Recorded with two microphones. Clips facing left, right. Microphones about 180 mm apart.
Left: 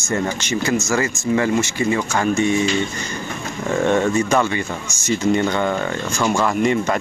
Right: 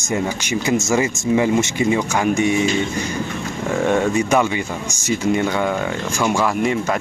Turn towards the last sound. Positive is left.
turn(degrees=-5)  # may be behind; listen again after turning